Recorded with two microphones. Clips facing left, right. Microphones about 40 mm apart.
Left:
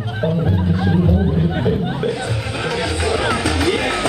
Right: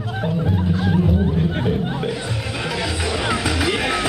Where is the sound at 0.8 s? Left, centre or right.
Centre.